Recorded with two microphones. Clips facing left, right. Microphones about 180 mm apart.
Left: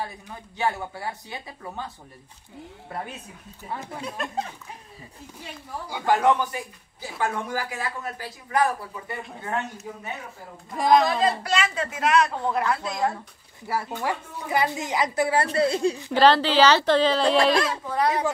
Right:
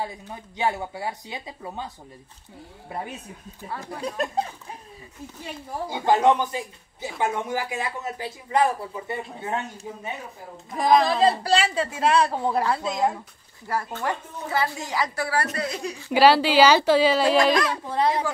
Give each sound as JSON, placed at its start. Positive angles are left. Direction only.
{"t": 0.6, "sound": "a woman's voice", "side_deg": -15}
{"t": 4.0, "sound": "a woman's voice", "side_deg": -35}
{"t": 5.9, "sound": "speech", "side_deg": -20}
{"t": 10.7, "sound": "a woman's voice", "side_deg": 0}
{"t": 11.1, "sound": "a woman's voice", "side_deg": -30}
{"t": 13.7, "sound": "a woman's voice", "side_deg": 10}
{"t": 16.1, "sound": "a woman's voice", "side_deg": -10}
{"t": 17.8, "sound": "speech", "side_deg": -25}